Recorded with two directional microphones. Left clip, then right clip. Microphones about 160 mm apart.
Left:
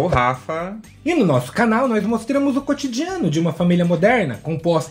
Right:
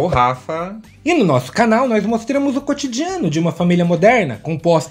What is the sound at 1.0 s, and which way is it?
Speech, 40° right (ahead or behind).